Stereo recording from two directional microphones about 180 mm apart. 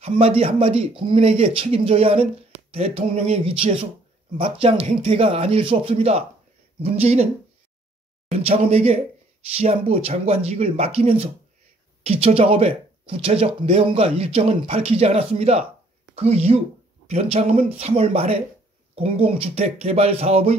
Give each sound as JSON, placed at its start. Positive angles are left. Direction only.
{"t": 0.0, "sound": "speech", "side_deg": -30}
{"t": 8.3, "sound": "speech", "side_deg": -35}